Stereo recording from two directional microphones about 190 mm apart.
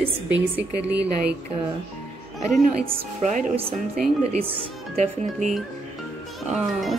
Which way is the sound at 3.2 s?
40° right (ahead or behind).